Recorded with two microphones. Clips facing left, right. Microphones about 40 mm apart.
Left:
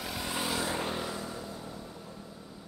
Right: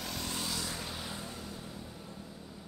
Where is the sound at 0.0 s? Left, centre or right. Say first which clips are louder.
Left 4 dB; centre.